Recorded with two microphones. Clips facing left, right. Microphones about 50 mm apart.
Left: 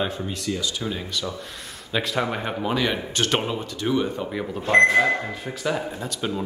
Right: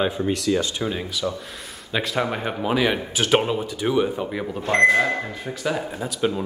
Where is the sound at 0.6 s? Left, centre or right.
Right.